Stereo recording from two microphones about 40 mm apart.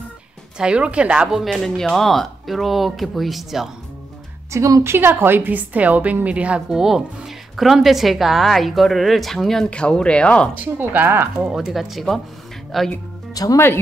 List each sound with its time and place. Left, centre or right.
0.6 s speech: right
1.4 s a woman's voice: centre
4.8 s a woman's voice: right
5.5 s a woman's voice: right
6.7 s a woman's voice: centre
9.7 s speech: left
10.5 s speech: right
11.5 s a woman's voice: centre